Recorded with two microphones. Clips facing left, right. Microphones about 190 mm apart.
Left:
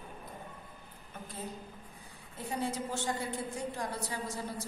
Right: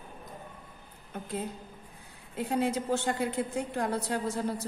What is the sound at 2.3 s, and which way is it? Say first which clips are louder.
A woman's voice: right 7 dB; 70° right (ahead or behind).